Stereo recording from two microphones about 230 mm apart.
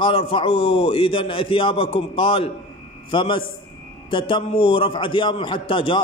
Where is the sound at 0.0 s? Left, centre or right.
Left.